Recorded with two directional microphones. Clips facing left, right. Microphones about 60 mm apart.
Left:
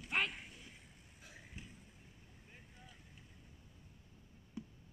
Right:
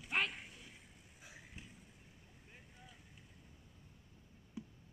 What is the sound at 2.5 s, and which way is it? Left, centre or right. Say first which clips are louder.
Vehicle: even; centre.